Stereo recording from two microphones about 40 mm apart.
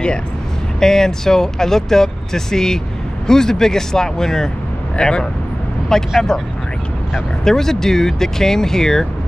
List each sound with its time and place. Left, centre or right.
0.7 s speech: centre
5.9 s speech: centre
7.4 s speech: centre